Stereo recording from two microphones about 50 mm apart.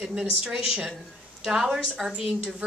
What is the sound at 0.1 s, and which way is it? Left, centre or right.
A woman's voice, centre.